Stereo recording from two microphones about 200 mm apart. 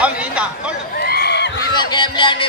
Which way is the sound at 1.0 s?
55° left (ahead or behind).